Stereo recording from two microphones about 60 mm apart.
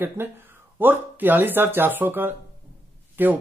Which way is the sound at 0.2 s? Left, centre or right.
Right.